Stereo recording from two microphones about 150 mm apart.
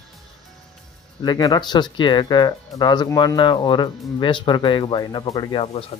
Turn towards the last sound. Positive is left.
turn(degrees=35)  # may be behind; listen again after turning